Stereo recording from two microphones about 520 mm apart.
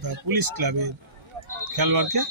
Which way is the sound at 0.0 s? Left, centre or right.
Right.